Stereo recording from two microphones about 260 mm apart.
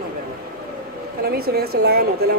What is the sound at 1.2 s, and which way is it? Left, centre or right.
A woman's voice, right.